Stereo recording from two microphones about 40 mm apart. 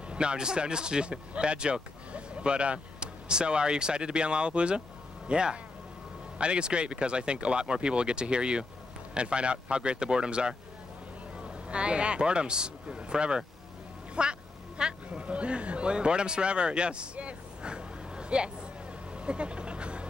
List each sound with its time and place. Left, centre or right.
0.1 s speech: right
19.1 s vehicle: right